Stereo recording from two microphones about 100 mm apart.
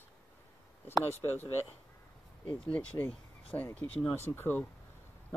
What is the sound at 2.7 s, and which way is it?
Speech, 15° left (ahead or behind).